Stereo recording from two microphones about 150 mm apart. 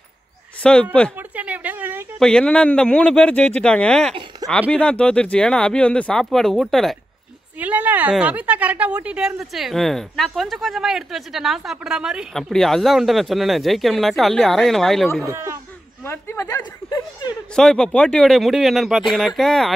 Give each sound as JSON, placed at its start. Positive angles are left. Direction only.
{"t": 0.6, "sound": "speech", "side_deg": 10}
{"t": 1.3, "sound": "a sound", "side_deg": -10}
{"t": 2.1, "sound": "a woman's voice", "side_deg": 5}
{"t": 7.5, "sound": "a woman's voice", "side_deg": -10}
{"t": 15.2, "sound": "speech", "side_deg": -20}
{"t": 16.1, "sound": "speech", "side_deg": 15}
{"t": 17.6, "sound": "a woman's voice", "side_deg": 5}